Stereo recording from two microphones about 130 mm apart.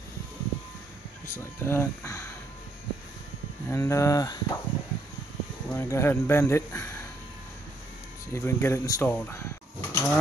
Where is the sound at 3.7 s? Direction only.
20° left (ahead or behind).